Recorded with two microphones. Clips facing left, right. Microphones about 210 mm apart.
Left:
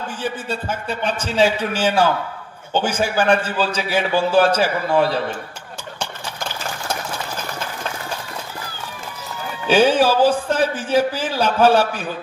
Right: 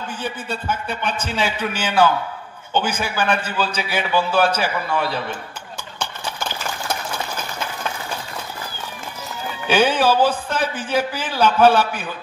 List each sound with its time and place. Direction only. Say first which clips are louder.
1.3 s a man's voice: left 8 dB; 40° left (ahead or behind)
9.7 s a man's voice: left 2 dB; 40° left (ahead or behind)